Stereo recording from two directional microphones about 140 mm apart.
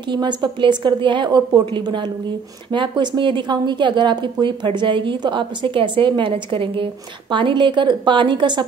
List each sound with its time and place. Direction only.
0.1 s a woman's voice: 35° right (ahead or behind)